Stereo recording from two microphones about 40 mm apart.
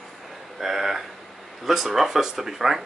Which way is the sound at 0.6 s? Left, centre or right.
Centre.